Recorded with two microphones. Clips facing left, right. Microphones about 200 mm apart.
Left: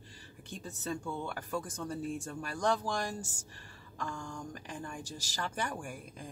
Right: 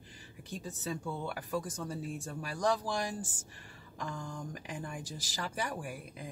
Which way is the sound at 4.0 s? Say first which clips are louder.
Even; 20° right (ahead or behind).